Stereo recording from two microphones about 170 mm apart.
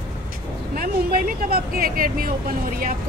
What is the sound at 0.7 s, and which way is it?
Speech, 55° right (ahead or behind).